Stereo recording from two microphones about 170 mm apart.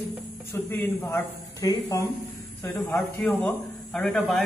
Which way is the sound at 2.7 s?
5° left (ahead or behind).